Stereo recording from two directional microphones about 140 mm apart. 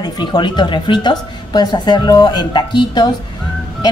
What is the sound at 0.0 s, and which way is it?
A woman's voice, 30° left (ahead or behind).